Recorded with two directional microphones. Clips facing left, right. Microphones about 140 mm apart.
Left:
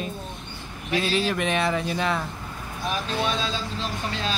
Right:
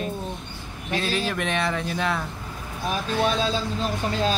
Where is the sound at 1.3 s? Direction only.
Centre (ahead or behind).